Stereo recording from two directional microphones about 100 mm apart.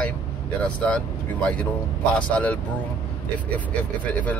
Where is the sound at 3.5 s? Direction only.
15° left (ahead or behind).